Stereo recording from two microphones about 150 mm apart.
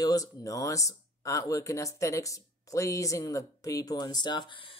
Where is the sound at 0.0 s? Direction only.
25° left (ahead or behind).